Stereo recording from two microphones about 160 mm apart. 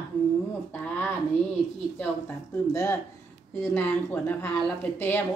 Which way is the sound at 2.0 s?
15° left (ahead or behind).